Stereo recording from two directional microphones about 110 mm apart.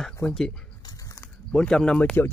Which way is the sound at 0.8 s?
30° left (ahead or behind).